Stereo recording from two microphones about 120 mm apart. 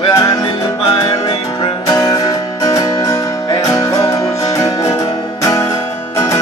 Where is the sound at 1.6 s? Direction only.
30° left (ahead or behind).